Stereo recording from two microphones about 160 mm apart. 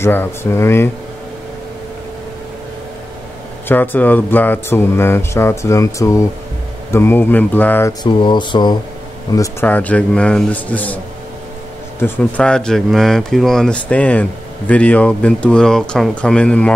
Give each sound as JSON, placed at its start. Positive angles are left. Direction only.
{"t": 0.0, "sound": "speech", "side_deg": 15}
{"t": 3.6, "sound": "speech", "side_deg": 10}
{"t": 8.0, "sound": "speech", "side_deg": 30}
{"t": 9.7, "sound": "speech", "side_deg": 10}
{"t": 12.0, "sound": "speech", "side_deg": 10}